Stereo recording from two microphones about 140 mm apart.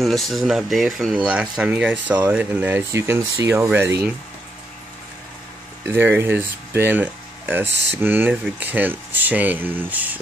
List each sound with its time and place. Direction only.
0.0 s speech: centre (ahead or behind); by 4.1 s 15° right (ahead or behind)
5.9 s speech: 15° right (ahead or behind)